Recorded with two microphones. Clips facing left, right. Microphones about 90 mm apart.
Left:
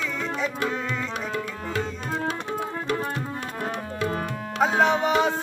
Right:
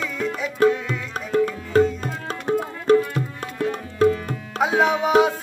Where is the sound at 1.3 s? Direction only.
40° right (ahead or behind).